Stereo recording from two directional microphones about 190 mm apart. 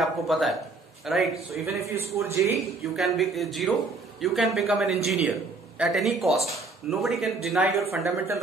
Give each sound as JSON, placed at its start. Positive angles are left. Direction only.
{"t": 0.0, "sound": "speech", "side_deg": 0}
{"t": 1.8, "sound": "a man's voice", "side_deg": -35}
{"t": 2.1, "sound": "speech", "side_deg": -15}
{"t": 2.5, "sound": "speech", "side_deg": 0}
{"t": 7.9, "sound": "speech", "side_deg": -15}